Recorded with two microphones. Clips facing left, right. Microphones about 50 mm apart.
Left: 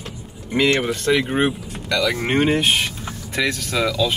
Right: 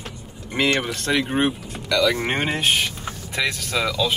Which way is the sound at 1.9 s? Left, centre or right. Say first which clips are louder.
Right 1 dB; left.